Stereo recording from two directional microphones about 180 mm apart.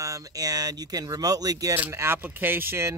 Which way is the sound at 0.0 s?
20° right (ahead or behind).